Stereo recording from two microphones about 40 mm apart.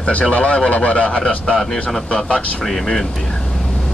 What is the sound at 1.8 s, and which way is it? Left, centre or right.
Speech, centre.